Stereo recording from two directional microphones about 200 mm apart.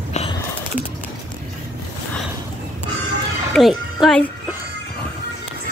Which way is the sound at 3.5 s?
Centre (ahead or behind).